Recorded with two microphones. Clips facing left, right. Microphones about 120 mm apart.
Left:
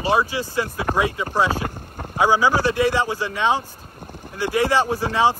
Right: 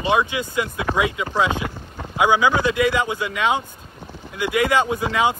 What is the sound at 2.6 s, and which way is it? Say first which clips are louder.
Speech: even; 35° left (ahead or behind).